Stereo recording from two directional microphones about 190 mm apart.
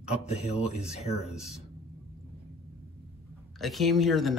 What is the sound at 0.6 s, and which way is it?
Speech, 5° right (ahead or behind).